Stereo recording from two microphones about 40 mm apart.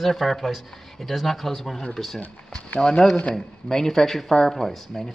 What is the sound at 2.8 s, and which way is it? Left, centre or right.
Speech, centre.